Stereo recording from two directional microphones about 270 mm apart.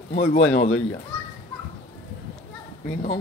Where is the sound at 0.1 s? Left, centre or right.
Left.